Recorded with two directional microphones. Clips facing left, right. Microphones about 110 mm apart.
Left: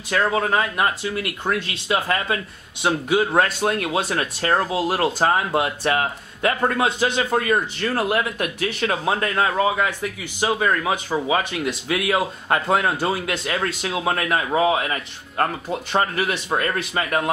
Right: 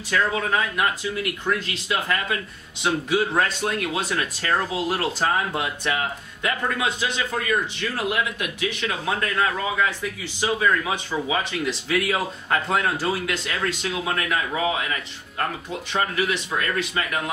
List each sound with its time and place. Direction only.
0.1 s speech: 35° left (ahead or behind)